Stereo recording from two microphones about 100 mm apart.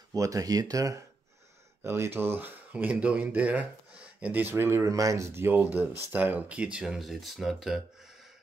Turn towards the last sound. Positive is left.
turn(degrees=-5)  # may be behind; listen again after turning